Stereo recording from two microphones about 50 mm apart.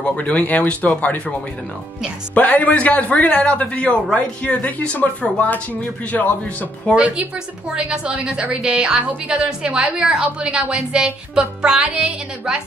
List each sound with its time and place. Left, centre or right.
0.0 s speech: left
2.3 s speech: left
3.3 s speech: centre; by 6.7 s left
7.7 s a woman's voice: centre